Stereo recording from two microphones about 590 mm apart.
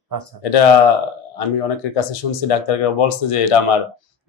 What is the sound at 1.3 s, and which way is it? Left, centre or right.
Speech, left.